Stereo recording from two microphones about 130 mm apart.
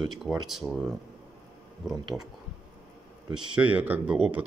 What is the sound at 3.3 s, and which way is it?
Speech, 10° right (ahead or behind).